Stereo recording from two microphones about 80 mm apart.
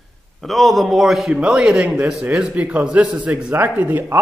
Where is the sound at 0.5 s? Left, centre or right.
Centre.